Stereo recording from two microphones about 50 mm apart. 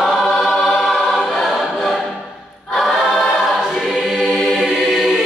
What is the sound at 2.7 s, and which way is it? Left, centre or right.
Choir, centre.